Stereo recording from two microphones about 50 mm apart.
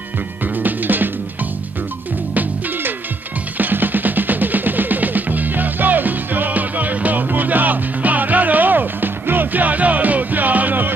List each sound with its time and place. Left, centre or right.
0.6 s music: right
3.5 s music: right